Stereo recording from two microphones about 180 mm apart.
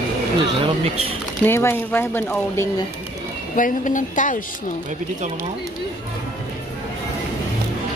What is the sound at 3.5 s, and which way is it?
A woman's voice, 45° left (ahead or behind).